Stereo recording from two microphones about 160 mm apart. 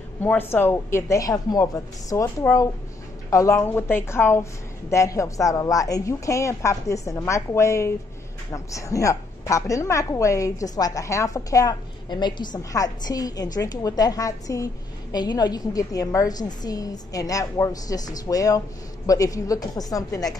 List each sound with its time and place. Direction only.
0.2 s a woman's voice: 15° left (ahead or behind)